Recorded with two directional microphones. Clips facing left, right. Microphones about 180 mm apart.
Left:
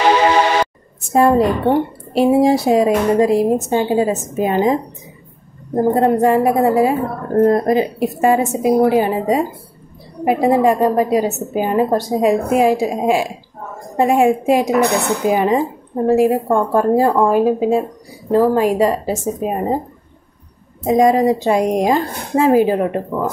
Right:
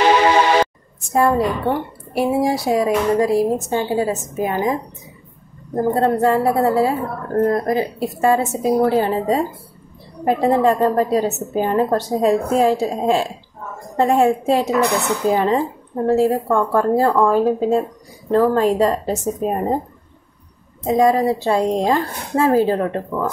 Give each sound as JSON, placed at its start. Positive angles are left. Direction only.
{"t": 1.1, "sound": "a woman's voice", "side_deg": 20}
{"t": 5.8, "sound": "speech", "side_deg": 15}
{"t": 20.8, "sound": "speech", "side_deg": 15}